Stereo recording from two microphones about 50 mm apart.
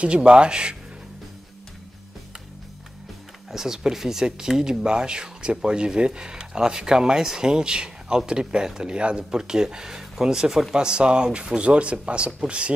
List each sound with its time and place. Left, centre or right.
0.0 s speech: right
3.5 s speech: centre